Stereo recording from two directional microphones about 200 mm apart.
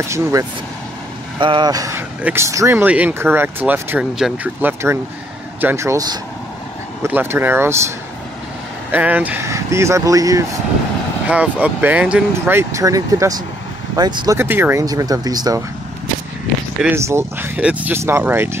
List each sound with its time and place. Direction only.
0.1 s speech: 15° right (ahead or behind)
8.9 s speech: 10° right (ahead or behind)
16.8 s speech: 15° right (ahead or behind)